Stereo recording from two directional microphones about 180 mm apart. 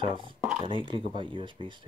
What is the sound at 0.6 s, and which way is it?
Speech, 25° right (ahead or behind).